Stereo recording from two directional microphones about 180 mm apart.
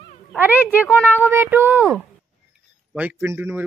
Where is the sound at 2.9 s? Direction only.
10° right (ahead or behind).